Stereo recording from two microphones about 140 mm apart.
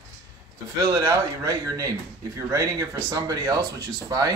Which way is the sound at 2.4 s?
20° right (ahead or behind).